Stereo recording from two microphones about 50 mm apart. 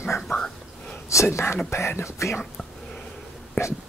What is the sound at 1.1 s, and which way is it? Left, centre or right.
Speech, left.